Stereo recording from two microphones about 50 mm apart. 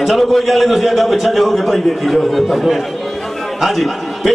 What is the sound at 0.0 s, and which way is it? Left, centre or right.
A man's voice, centre.